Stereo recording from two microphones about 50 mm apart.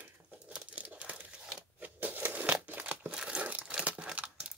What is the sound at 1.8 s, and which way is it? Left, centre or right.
Crushing, right.